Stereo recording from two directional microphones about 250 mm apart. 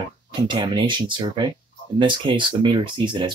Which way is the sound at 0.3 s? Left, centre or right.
Centre.